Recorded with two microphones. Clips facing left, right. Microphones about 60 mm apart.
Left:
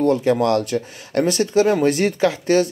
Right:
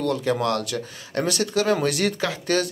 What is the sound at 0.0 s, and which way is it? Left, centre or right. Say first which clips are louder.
Speech: left 6 dB; left.